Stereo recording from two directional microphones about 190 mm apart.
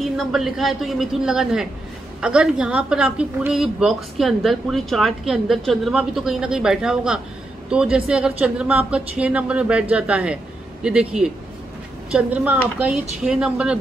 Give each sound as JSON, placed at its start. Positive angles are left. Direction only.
{"t": 0.0, "sound": "a woman's voice", "side_deg": 0}